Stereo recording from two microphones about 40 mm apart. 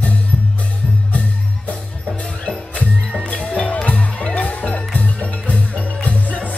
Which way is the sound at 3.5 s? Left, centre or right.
Left.